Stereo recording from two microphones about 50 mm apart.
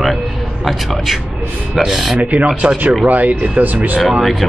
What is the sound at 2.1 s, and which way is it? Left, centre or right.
Speech, right.